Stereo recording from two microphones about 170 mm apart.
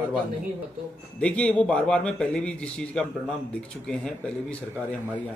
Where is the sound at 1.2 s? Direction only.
5° left (ahead or behind).